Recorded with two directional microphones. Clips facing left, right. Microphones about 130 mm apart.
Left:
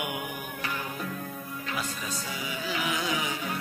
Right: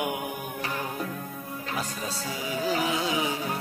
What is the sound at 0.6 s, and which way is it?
Music, 35° right (ahead or behind).